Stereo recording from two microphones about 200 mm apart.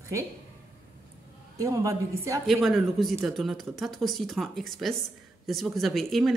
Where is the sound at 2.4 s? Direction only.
Centre (ahead or behind).